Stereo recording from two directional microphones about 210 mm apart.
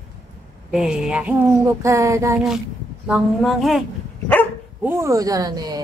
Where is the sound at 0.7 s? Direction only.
5° right (ahead or behind).